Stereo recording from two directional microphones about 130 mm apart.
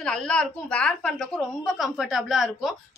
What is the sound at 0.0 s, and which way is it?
A woman's voice, 5° left (ahead or behind).